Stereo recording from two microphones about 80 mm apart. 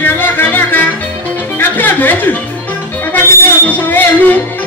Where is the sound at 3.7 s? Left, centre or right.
Left.